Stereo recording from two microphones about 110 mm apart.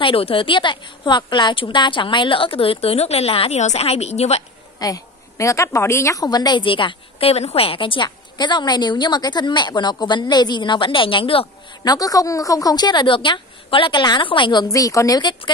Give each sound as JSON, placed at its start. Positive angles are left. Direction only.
{"t": 0.0, "sound": "a woman's voice", "side_deg": 55}
{"t": 4.7, "sound": "a woman's voice", "side_deg": 30}
{"t": 11.8, "sound": "a woman's voice", "side_deg": 35}